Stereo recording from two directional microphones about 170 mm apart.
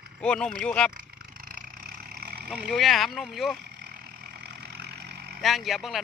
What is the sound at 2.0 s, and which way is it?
Vehicle, 60° right (ahead or behind).